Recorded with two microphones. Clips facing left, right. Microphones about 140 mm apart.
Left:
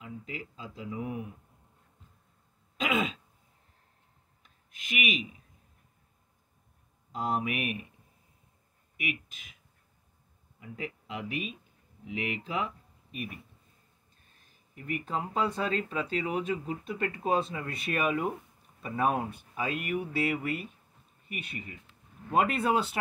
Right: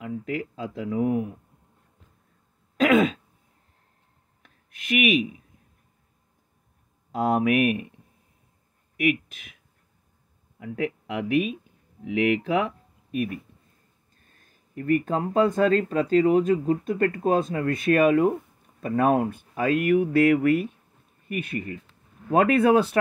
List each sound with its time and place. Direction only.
0.0 s speech: 65° right (ahead or behind)
4.4 s a sound: 70° right (ahead or behind)
7.1 s speech: 70° right (ahead or behind)
8.9 s speech: 65° right (ahead or behind)
10.6 s speech: 70° right (ahead or behind)
14.3 s speech: 50° right (ahead or behind)